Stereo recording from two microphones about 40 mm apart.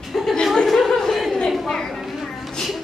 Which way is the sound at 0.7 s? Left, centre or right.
Centre.